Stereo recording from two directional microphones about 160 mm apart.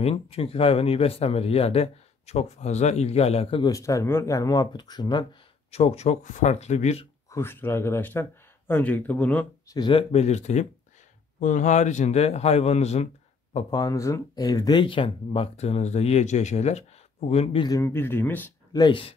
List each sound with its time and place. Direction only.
0.0 s speech: 35° left (ahead or behind)
3.6 s speech: 20° left (ahead or behind)
5.7 s a man's voice: 40° left (ahead or behind)
7.2 s speech: 15° left (ahead or behind)
9.7 s a man's voice: 30° left (ahead or behind)
13.7 s speech: 25° left (ahead or behind)
17.6 s speech: 15° left (ahead or behind)
18.7 s speech: 25° left (ahead or behind)